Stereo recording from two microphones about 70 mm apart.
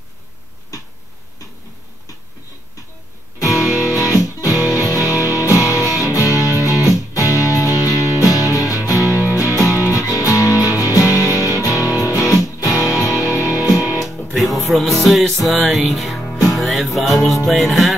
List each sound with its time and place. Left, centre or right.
3.3 s music: left
14.3 s music: centre